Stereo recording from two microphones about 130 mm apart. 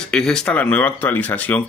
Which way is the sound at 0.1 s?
5° left (ahead or behind).